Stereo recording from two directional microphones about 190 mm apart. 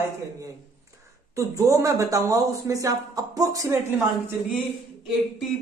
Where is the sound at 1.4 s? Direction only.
15° right (ahead or behind).